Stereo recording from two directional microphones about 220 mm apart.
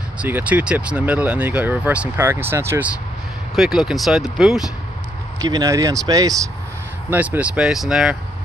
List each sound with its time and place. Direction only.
0.2 s speech: 5° right (ahead or behind)
5.4 s speech: 15° right (ahead or behind)